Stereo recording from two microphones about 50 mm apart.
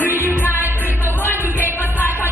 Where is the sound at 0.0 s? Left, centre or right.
Right.